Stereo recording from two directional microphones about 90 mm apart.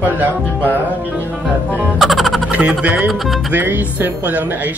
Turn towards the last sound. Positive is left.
turn(degrees=-20)  # may be behind; listen again after turning